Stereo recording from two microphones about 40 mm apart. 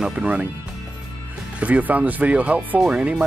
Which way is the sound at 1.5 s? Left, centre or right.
Right.